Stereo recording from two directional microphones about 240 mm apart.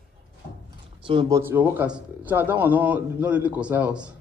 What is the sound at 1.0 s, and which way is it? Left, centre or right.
Speech, right.